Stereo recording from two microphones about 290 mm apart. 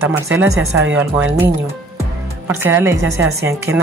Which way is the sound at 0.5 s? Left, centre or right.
Right.